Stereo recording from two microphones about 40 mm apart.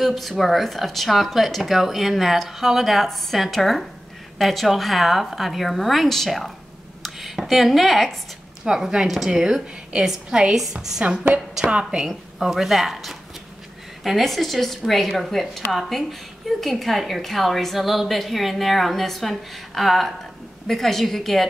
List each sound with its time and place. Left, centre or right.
0.0 s a woman's voice: centre
7.2 s a woman's voice: centre
8.6 s a woman's voice: centre
11.0 s a woman's voice: right
12.4 s a woman's voice: centre